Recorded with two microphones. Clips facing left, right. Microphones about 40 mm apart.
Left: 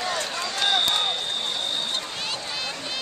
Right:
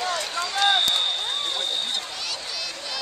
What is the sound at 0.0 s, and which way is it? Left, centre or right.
Run, centre.